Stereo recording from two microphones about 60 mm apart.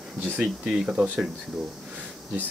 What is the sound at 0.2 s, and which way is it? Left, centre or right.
Speech, centre.